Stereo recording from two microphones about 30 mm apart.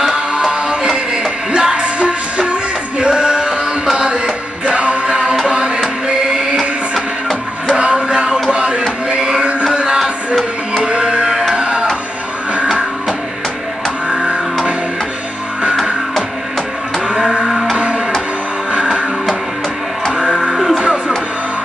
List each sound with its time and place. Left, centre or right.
0.4 s music: centre; by 2.5 s right
3.0 s music: right
5.0 s music: centre
7.7 s music: right
8.5 s a sound: right
9.1 s music: right
10.8 s music: right
11.5 s a sound: right
14.0 s music: right
17.5 s music: centre
18.8 s music: right
20.5 s music: centre